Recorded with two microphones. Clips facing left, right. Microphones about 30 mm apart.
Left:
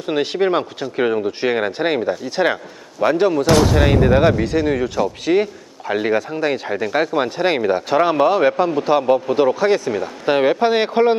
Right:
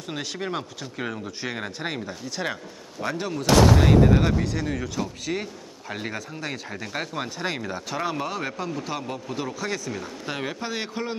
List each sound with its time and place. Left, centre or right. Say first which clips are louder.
0.0 s speech: left 13 dB; left